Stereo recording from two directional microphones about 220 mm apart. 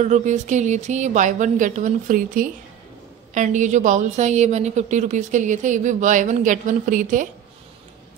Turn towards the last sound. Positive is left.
turn(degrees=-35)  # may be behind; listen again after turning